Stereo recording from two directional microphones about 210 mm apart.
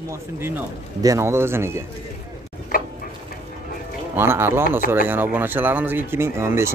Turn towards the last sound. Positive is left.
turn(degrees=-10)  # may be behind; listen again after turning